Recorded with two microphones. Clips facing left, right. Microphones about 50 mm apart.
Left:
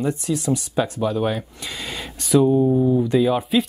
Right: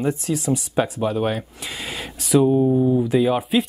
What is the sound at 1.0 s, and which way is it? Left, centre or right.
Speech, right.